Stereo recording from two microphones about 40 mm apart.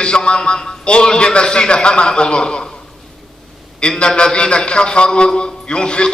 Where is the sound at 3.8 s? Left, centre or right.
Left.